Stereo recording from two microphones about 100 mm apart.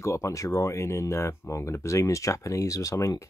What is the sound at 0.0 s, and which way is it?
Speech, 30° left (ahead or behind).